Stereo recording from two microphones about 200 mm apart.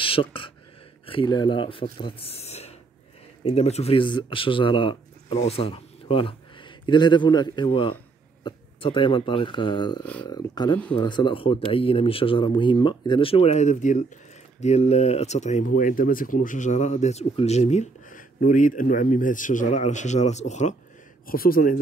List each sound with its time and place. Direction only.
0.0 s speech: 25° left (ahead or behind)
21.3 s speech: 45° left (ahead or behind)